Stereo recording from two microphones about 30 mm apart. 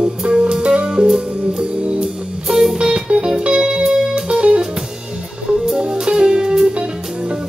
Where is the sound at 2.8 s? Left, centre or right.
Right.